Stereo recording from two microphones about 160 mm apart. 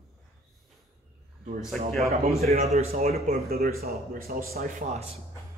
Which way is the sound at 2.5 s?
45° right (ahead or behind).